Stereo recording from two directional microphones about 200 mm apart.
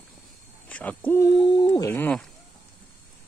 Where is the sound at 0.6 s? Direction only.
5° left (ahead or behind).